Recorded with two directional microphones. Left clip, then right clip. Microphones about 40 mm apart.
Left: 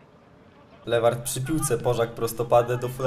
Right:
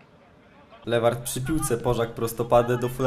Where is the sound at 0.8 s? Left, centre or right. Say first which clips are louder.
Left 1 dB; right.